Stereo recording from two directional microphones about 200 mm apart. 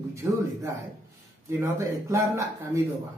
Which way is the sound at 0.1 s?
15° right (ahead or behind).